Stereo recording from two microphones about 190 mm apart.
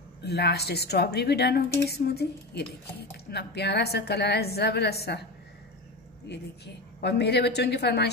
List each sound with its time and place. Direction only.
0.2 s a woman's voice: 60° left (ahead or behind)
6.2 s a woman's voice: 60° left (ahead or behind)